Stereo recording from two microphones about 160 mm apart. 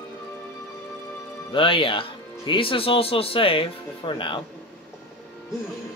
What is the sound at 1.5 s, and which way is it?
Speech, 35° left (ahead or behind).